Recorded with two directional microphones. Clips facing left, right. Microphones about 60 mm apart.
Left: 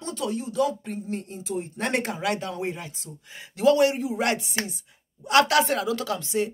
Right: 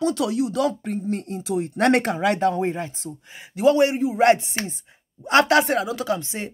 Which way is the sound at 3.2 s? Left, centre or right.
Centre.